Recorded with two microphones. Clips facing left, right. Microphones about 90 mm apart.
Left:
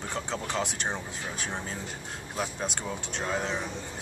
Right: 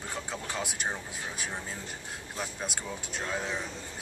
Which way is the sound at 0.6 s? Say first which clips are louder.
Left 4 dB; 5° right (ahead or behind).